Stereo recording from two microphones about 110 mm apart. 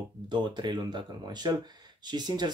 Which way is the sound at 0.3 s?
45° right (ahead or behind).